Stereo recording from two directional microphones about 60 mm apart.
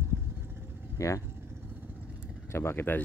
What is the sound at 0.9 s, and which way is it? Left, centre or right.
Speech, left.